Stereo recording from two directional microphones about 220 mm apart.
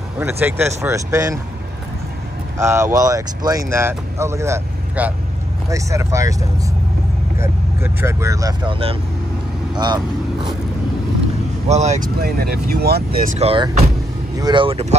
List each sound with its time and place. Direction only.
0.2 s speech: 10° right (ahead or behind)
2.5 s speech: 10° right (ahead or behind)
7.3 s speech: 10° right (ahead or behind)
11.6 s speech: 30° right (ahead or behind)
12.2 s speech: 45° right (ahead or behind)
13.4 s speech: 25° right (ahead or behind)